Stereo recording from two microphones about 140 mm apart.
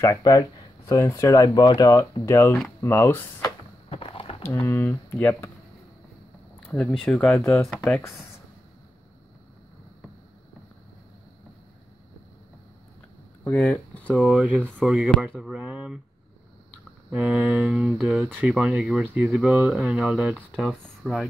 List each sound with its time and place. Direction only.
0.0 s speech: 25° left (ahead or behind)
3.9 s a sound: 40° left (ahead or behind)
4.6 s speech: 15° left (ahead or behind)
6.7 s speech: 5° left (ahead or behind)
13.4 s speech: 10° left (ahead or behind)
14.1 s speech: 10° right (ahead or behind)
17.1 s speech: 5° right (ahead or behind)